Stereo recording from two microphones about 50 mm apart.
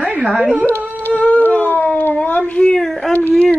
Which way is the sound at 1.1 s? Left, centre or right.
Left.